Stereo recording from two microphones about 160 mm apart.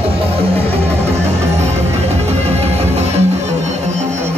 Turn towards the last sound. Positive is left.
turn(degrees=-40)  # may be behind; listen again after turning